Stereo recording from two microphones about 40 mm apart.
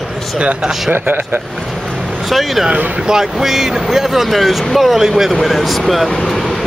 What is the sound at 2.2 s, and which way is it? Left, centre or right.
Speech, centre.